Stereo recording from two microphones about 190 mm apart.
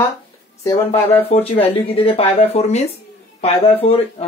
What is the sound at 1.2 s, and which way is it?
Speech, 30° left (ahead or behind).